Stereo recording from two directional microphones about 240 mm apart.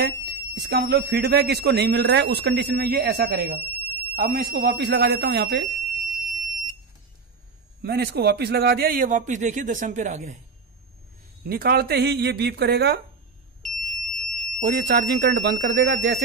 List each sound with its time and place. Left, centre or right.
0.0 s speech: right
6.3 s fire alarm: centre
7.8 s a man's voice: right
11.4 s a man's voice: right
13.6 s smoke detector: centre
14.6 s speech: right